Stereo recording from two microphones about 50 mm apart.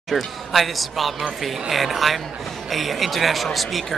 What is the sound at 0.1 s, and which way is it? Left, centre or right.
Speech, centre.